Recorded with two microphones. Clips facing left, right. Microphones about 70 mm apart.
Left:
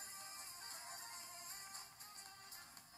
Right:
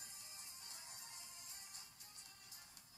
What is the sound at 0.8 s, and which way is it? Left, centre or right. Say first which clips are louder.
Music: left 7 dB; left.